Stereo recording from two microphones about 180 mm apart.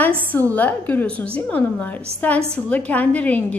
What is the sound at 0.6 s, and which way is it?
A woman's voice, 10° left (ahead or behind).